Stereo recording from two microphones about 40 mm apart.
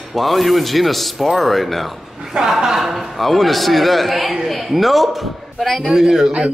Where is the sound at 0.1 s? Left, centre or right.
Centre.